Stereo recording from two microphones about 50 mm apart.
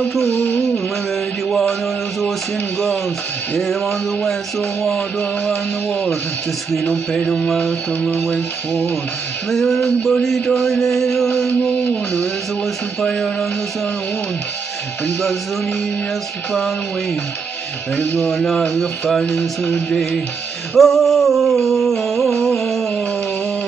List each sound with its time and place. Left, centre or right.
0.2 s music: right
1.5 s mantra: centre
3.5 s mantra: centre
6.7 s mantra: centre
9.5 s a sound: centre
10.4 s mantra: centre
13.0 s mantra: centre
18.2 s a sound: centre
19.2 s mantra: centre
19.9 s a sound: centre